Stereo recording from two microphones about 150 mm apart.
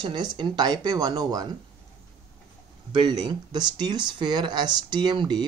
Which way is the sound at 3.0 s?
30° right (ahead or behind).